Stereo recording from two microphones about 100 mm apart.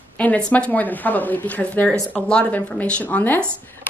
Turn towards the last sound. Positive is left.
turn(degrees=20)  # may be behind; listen again after turning